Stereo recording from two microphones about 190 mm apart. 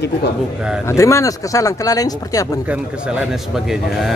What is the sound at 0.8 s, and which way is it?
Speech, 15° left (ahead or behind).